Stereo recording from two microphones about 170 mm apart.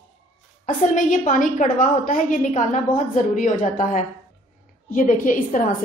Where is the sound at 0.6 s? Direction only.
50° left (ahead or behind).